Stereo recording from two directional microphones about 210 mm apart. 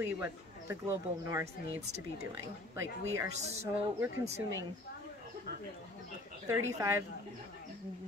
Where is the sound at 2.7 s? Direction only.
15° right (ahead or behind).